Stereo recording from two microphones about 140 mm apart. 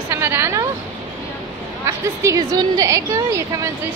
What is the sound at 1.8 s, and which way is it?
A woman's voice, 20° right (ahead or behind).